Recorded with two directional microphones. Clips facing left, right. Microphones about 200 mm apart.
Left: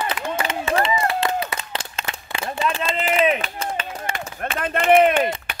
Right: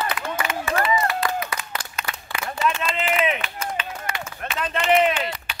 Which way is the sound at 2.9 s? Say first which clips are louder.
Left 4 dB; 40° left (ahead or behind).